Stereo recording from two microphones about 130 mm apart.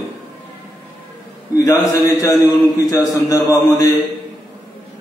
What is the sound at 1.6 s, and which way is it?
A man's voice, 25° left (ahead or behind).